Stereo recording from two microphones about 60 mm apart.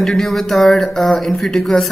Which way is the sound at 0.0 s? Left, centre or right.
Centre.